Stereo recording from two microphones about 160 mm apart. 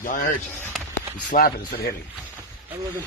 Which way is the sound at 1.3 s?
70° left (ahead or behind).